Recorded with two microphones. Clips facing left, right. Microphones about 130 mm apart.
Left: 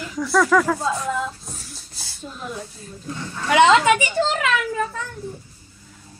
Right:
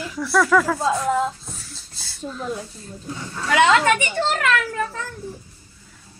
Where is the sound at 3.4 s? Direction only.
20° left (ahead or behind).